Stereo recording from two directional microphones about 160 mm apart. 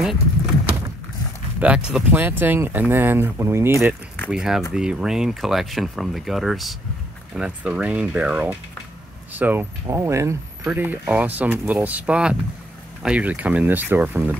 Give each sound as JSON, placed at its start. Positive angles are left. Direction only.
{"t": 1.6, "sound": "speech", "side_deg": -5}
{"t": 4.3, "sound": "speech", "side_deg": -5}